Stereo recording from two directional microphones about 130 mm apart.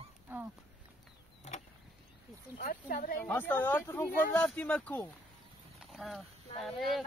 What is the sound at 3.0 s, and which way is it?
Speech, 90° left.